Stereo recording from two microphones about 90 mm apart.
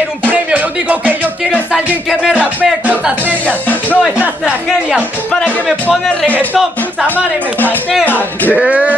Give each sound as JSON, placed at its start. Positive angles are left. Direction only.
{"t": 0.3, "sound": "speech", "side_deg": -15}
{"t": 3.4, "sound": "speech", "side_deg": 20}
{"t": 6.5, "sound": "speech", "side_deg": -15}
{"t": 8.0, "sound": "speech", "side_deg": 20}
{"t": 8.5, "sound": "speech", "side_deg": -15}